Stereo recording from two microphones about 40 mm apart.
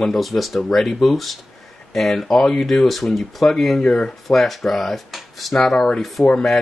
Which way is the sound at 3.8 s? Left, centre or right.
Left.